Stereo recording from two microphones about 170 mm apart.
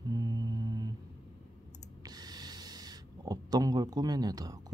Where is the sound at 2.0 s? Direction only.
25° right (ahead or behind).